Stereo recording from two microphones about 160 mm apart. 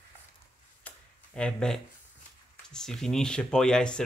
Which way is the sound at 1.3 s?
5° left (ahead or behind).